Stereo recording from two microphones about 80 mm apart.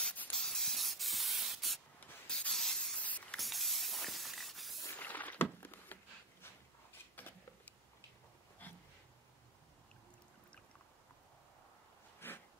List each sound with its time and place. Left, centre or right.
0.0 s spray: left
0.4 s spray: centre
3.0 s spray: centre
3.3 s spray: centre
4.9 s a sound: left
7.2 s a sound: left
12.2 s dog: left